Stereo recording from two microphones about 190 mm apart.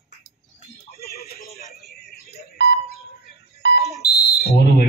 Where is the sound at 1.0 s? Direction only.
55° left (ahead or behind).